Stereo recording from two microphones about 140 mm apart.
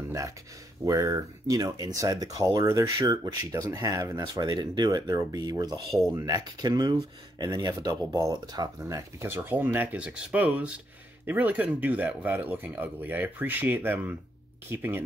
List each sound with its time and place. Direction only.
0.8 s speech: 25° right (ahead or behind)
5.9 s speech: centre (ahead or behind)
6.1 s speech: 30° right (ahead or behind)